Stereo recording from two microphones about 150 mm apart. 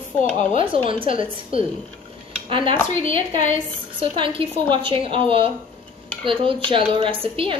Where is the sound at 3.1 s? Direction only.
55° left (ahead or behind).